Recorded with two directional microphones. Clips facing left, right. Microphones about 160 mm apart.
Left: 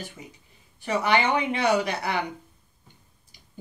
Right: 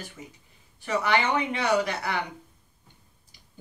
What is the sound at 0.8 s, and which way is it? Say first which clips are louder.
Speech: left 2 dB; 15° left (ahead or behind).